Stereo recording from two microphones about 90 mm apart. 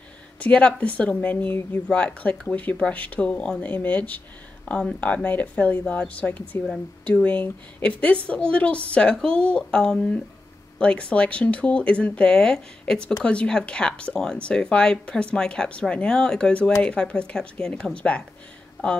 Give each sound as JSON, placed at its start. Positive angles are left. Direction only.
{"t": 0.4, "sound": "speech", "side_deg": 10}